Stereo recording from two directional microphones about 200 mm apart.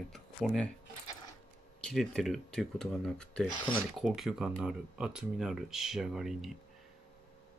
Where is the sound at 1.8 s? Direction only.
Centre (ahead or behind).